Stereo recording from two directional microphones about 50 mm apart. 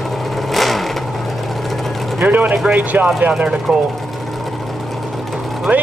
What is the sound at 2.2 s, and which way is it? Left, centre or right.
Speech, right.